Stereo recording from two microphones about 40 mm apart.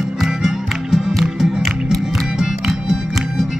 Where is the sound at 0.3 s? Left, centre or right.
Centre.